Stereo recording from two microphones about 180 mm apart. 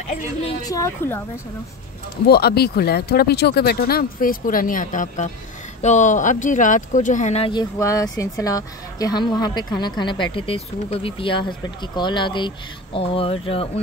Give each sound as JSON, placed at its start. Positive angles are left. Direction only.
{"t": 0.7, "sound": "a woman's voice", "side_deg": 15}
{"t": 2.2, "sound": "speech", "side_deg": 60}
{"t": 7.8, "sound": "speech", "side_deg": 15}